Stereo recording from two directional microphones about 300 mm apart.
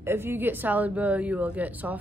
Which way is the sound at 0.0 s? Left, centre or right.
Centre.